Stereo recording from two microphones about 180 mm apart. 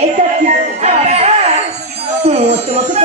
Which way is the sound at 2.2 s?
35° right (ahead or behind).